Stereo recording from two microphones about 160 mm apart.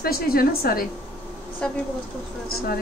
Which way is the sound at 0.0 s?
70° left (ahead or behind).